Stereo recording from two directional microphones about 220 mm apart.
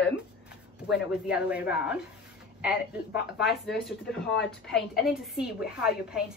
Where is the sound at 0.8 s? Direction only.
Centre (ahead or behind).